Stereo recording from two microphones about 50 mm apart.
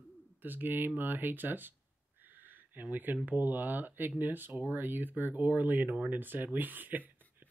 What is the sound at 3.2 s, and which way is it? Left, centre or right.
Speech, right.